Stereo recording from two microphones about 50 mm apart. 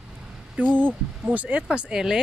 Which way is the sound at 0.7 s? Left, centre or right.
Right.